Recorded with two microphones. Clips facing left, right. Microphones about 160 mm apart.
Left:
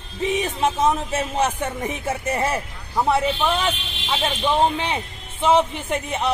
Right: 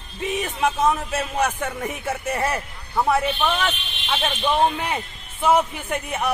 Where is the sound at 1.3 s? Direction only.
20° left (ahead or behind).